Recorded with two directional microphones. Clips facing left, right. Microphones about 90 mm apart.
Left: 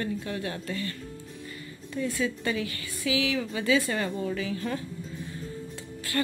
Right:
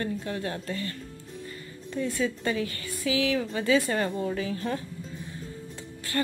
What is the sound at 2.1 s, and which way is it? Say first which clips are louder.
Speech: right 2 dB; 35° right (ahead or behind).